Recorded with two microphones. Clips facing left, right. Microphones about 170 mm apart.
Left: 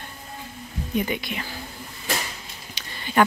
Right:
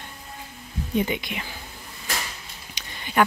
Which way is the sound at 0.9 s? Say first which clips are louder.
Right 1 dB; 20° right (ahead or behind).